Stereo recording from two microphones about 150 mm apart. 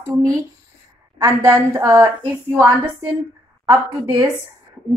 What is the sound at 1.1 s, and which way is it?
Speech, 20° right (ahead or behind).